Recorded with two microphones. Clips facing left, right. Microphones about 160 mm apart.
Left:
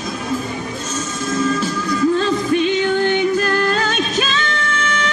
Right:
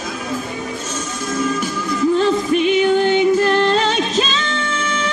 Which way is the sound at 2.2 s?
20° right (ahead or behind).